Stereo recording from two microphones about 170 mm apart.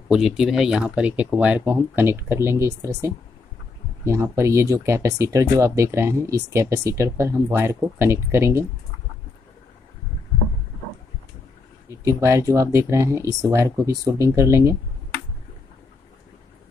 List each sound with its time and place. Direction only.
0.1 s speech: centre (ahead or behind)
11.9 s speech: 15° right (ahead or behind)